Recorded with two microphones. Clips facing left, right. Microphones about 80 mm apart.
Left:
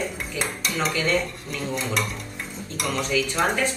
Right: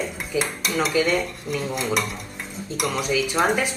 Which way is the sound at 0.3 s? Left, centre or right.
Centre.